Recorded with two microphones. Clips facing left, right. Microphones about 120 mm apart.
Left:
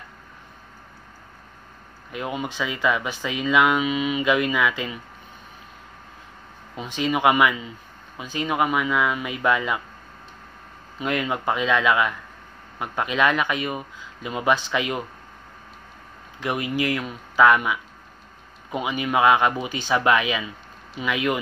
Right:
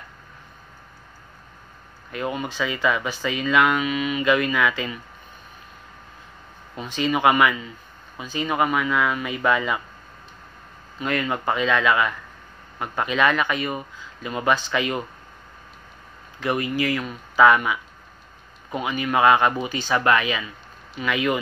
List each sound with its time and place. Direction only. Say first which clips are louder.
2.1 s speech: right 1 dB; 10° left (ahead or behind)
3.8 s speech: left 1 dB; 20° left (ahead or behind)
4.3 s speech: right 2 dB; 10° left (ahead or behind)
6.7 s speech: right 1 dB; 15° left (ahead or behind)
11.0 s speech: even; 10° left (ahead or behind)
16.3 s speech: right 1 dB; 10° left (ahead or behind)